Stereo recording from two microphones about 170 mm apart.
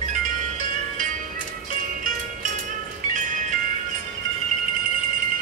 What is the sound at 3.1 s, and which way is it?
Music, 50° right (ahead or behind).